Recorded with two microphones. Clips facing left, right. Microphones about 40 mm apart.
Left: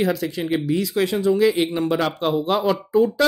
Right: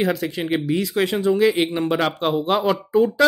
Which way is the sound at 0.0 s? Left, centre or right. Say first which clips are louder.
Even; right.